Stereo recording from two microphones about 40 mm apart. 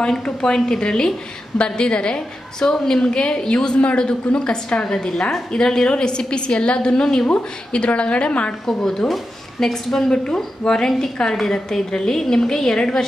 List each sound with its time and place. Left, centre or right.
0.7 s a woman's voice: centre
4.8 s a woman's voice: centre; by 8.5 s left
8.6 s a woman's voice: centre